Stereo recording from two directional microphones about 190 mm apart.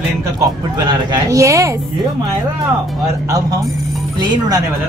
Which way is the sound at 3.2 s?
20° right (ahead or behind).